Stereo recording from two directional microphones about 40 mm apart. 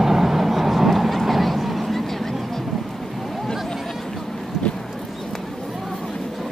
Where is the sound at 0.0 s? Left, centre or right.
Centre.